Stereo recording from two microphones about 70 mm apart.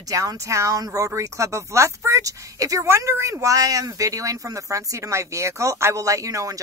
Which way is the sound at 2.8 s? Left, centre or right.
Right.